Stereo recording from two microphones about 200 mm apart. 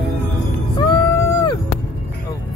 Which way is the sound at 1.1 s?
15° left (ahead or behind).